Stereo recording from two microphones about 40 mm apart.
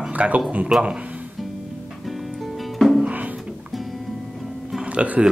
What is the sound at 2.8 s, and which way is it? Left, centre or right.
Music, centre.